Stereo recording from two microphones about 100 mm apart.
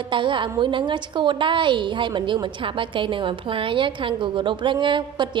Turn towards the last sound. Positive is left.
turn(degrees=-50)  # may be behind; listen again after turning